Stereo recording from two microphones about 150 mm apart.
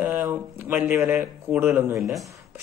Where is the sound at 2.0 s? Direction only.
Centre (ahead or behind).